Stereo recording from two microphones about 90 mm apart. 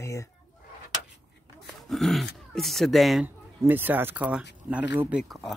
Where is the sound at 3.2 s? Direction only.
20° right (ahead or behind).